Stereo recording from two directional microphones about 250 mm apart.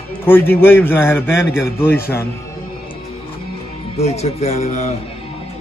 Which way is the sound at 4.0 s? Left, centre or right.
Left.